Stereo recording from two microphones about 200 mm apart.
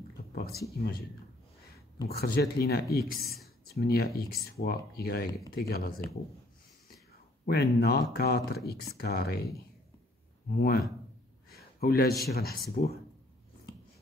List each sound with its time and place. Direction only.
0.3 s a sound: 50° left (ahead or behind)
2.0 s speech: 50° left (ahead or behind)
7.4 s speech: 55° left (ahead or behind)
10.5 s speech: 50° left (ahead or behind)
11.5 s a sound: 50° left (ahead or behind)
12.3 s speech: 50° left (ahead or behind)